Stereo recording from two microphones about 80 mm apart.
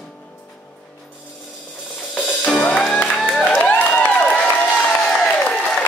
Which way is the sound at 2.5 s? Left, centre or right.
Centre.